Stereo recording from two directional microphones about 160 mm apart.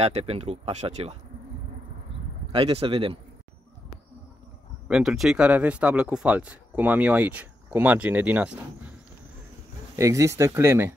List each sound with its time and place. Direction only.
0.0 s speech: 40° right (ahead or behind)
2.5 s speech: 35° right (ahead or behind)
4.8 s speech: 5° right (ahead or behind)
9.9 s speech: 20° right (ahead or behind)